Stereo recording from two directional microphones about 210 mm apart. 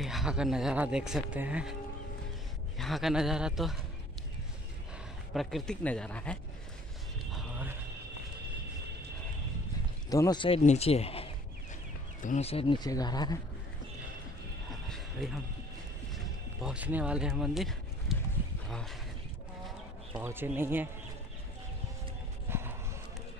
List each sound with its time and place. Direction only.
0.0 s speech: centre (ahead or behind)
2.8 s speech: centre (ahead or behind)
5.3 s speech: centre (ahead or behind)
7.3 s horse: 10° right (ahead or behind)
10.0 s speech: 15° left (ahead or behind)
14.7 s vehicle: centre (ahead or behind)
16.6 s speech: 5° right (ahead or behind)
20.2 s speech: 10° right (ahead or behind)
22.5 s a sound: 10° right (ahead or behind)